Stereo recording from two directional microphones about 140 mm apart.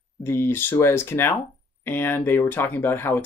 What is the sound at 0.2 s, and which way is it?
Speech, 15° left (ahead or behind).